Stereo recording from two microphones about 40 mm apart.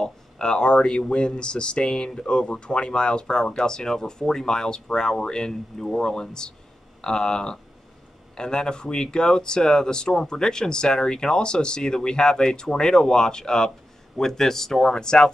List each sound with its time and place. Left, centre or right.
0.0 s speech: centre